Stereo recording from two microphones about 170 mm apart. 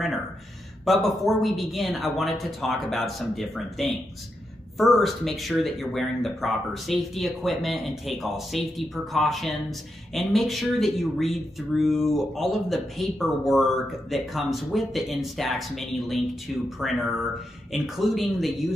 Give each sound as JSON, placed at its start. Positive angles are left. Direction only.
{"t": 0.8, "sound": "speech", "side_deg": 0}